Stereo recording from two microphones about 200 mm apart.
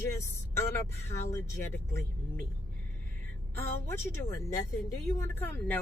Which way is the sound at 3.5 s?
15° left (ahead or behind).